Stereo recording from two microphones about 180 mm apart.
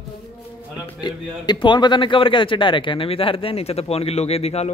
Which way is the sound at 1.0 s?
25° left (ahead or behind).